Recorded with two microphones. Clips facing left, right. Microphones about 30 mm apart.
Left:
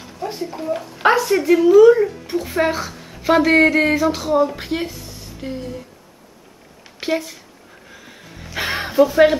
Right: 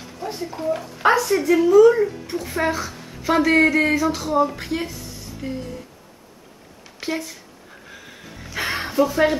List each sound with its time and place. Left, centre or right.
0.5 s speech: centre
0.9 s a sound: centre
1.7 s speech: centre
2.9 s a sound: centre
3.2 s speech: centre
7.0 s speech: centre
7.9 s music: centre
8.6 s speech: centre